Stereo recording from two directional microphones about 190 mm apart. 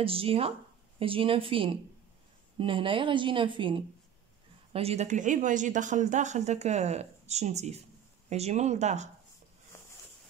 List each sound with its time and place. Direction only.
0.0 s a woman's voice: 30° right (ahead or behind)